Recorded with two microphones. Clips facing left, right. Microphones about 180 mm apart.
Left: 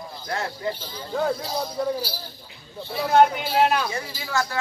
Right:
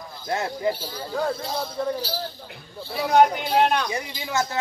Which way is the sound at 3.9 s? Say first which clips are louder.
Right 1 dB; 15° right (ahead or behind).